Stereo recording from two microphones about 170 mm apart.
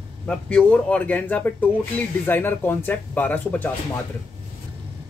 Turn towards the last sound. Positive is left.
turn(degrees=10)  # may be behind; listen again after turning